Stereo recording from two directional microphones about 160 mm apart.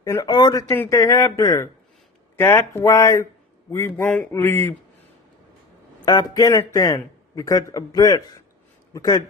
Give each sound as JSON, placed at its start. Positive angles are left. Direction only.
{"t": 0.0, "sound": "a man's voice", "side_deg": 20}
{"t": 6.0, "sound": "a man's voice", "side_deg": 25}